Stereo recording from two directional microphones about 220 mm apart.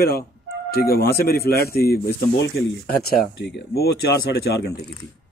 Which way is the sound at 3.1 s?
45° left (ahead or behind).